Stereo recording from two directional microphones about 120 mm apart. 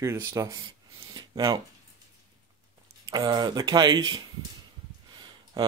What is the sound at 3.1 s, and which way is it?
Speech, 35° right (ahead or behind).